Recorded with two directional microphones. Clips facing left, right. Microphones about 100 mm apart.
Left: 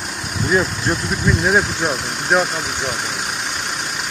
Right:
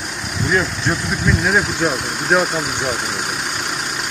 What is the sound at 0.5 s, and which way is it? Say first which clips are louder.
Speech: left 1 dB; 5° left (ahead or behind).